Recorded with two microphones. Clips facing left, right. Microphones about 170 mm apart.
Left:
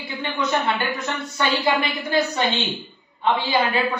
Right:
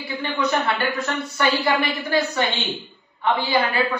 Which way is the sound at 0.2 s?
20° left (ahead or behind).